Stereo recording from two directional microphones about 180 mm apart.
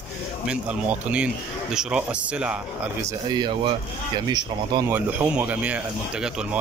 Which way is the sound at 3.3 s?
25° right (ahead or behind).